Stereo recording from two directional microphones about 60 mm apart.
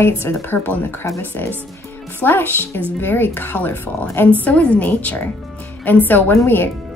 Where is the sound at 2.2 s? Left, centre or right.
Left.